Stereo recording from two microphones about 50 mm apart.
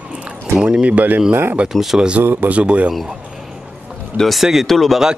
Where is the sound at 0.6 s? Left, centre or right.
Right.